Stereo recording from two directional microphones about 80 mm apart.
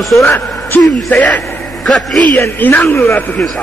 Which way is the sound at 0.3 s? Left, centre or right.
Left.